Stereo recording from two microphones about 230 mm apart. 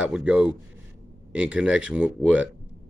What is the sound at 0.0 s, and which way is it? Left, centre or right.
Speech, centre.